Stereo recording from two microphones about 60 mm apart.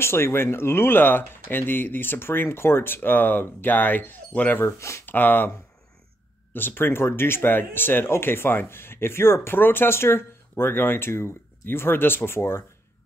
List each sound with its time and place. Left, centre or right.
0.0 s speech: left
4.6 s speech: left
5.0 s speech: left
6.5 s speech: left